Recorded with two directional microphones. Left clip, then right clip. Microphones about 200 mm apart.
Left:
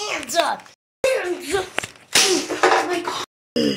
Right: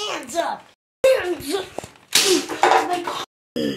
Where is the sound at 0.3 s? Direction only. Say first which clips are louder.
Left 5 dB; 20° left (ahead or behind).